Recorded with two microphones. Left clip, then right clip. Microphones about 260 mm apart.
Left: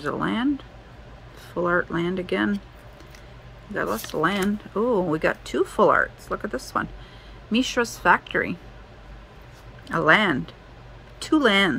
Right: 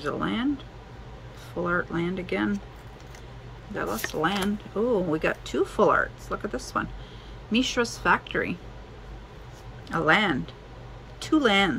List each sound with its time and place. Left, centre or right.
0.0 s speech: left
1.6 s speech: left
3.7 s a woman's voice: left
9.8 s speech: centre